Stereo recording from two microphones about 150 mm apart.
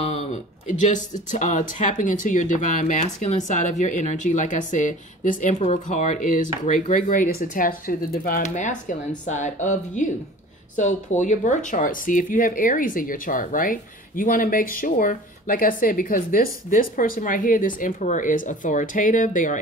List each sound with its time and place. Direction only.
0.0 s speech: 45° left (ahead or behind)
5.6 s speech: 50° left (ahead or behind); by 8.4 s 75° left (ahead or behind)
8.4 s speech: 55° left (ahead or behind)